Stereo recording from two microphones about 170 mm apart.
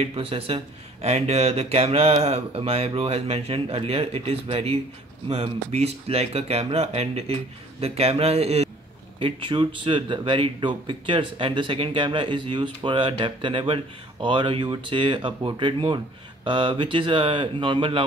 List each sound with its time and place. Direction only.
0.0 s speech: 35° right (ahead or behind)